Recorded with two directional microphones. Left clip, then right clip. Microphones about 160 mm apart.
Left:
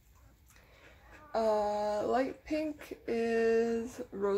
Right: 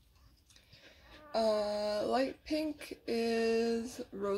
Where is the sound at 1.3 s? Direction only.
10° right (ahead or behind).